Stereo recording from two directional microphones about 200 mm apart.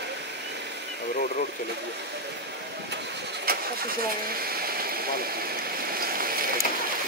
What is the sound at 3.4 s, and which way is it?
Vehicle, 50° right (ahead or behind).